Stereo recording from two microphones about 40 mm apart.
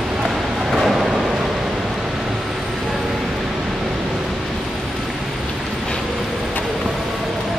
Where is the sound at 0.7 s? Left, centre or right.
Centre.